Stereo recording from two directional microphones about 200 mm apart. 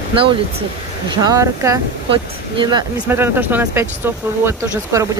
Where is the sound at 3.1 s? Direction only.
10° right (ahead or behind).